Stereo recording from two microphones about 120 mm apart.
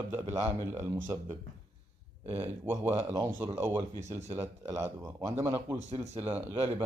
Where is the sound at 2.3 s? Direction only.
15° right (ahead or behind).